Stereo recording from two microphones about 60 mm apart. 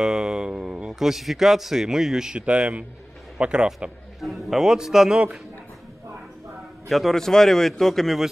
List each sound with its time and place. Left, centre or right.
0.0 s a sound: centre
0.9 s a man's voice: centre
4.2 s a man's voice: centre
6.9 s a man's voice: centre